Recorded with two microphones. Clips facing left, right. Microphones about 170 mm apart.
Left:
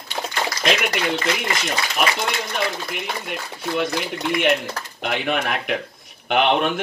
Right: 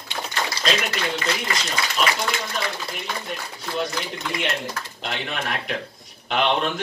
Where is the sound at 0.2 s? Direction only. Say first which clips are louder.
Left 4 dB; 30° left (ahead or behind).